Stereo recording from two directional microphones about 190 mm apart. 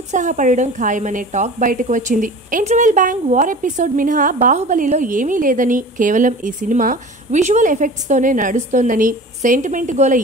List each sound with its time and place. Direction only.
0.1 s a woman's voice: 40° right (ahead or behind)